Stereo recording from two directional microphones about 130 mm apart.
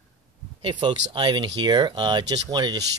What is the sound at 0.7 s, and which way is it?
Speech, 40° right (ahead or behind).